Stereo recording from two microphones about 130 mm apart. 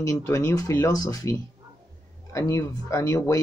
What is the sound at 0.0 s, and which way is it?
Speech, 25° left (ahead or behind).